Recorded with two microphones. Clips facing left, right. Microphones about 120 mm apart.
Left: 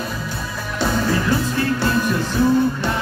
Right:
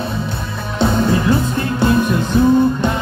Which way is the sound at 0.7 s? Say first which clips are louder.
Right 5 dB; 25° right (ahead or behind).